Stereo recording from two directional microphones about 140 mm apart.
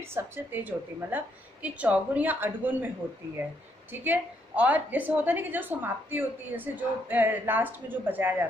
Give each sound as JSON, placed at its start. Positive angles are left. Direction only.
{"t": 0.1, "sound": "a woman's voice", "side_deg": -15}